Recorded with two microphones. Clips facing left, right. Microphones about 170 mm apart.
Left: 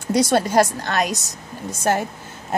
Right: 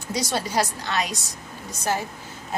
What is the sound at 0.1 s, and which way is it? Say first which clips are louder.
A woman's voice: left 9 dB; 50° left (ahead or behind).